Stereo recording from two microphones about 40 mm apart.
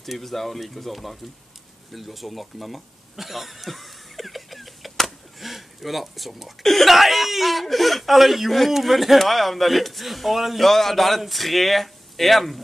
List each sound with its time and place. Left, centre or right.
0.0 s speech: centre